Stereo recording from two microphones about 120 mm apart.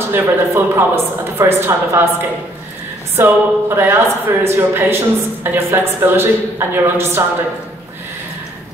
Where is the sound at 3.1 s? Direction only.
20° right (ahead or behind).